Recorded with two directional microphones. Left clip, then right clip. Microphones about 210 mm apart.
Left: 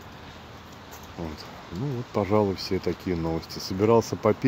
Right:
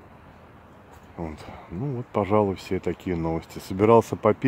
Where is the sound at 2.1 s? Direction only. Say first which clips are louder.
Right 2 dB; 20° right (ahead or behind).